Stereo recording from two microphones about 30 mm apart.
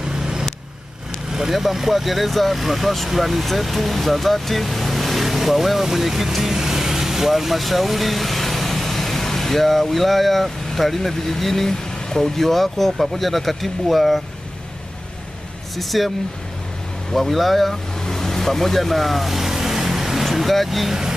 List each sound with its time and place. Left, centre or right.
0.1 s vehicle: right
1.5 s speech: centre
15.7 s speech: centre
17.1 s speech: centre
18.0 s vehicle: centre